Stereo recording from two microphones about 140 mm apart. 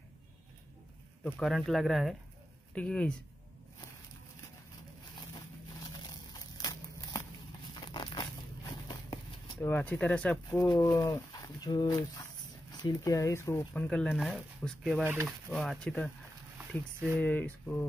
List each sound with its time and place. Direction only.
1.2 s speech: centre (ahead or behind)
5.9 s a sound: 30° left (ahead or behind)
9.6 s speech: 15° left (ahead or behind)
10.7 s speech: 25° left (ahead or behind)
13.8 s speech: 5° left (ahead or behind)
17.2 s speech: 10° left (ahead or behind)